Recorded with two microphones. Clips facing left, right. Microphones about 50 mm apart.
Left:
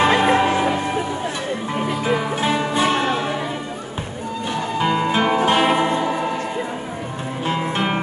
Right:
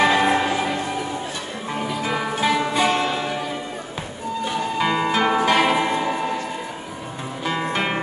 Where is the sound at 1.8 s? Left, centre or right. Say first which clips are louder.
Left 3 dB; left.